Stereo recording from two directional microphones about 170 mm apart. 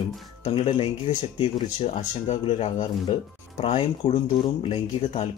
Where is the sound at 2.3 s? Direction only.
40° left (ahead or behind).